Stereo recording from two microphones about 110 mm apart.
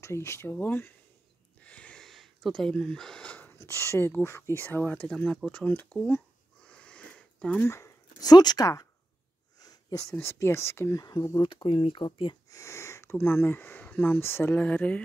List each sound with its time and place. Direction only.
0.0 s speech: 25° left (ahead or behind)
6.6 s a sound: 10° left (ahead or behind)
7.7 s a sound: 25° left (ahead or behind)
8.3 s speech: 40° left (ahead or behind)
9.6 s sniff: 35° left (ahead or behind)
10.2 s speech: 25° left (ahead or behind)
11.1 s speech: 35° left (ahead or behind)
11.5 s speech: 55° left (ahead or behind)
12.4 s speech: 25° left (ahead or behind)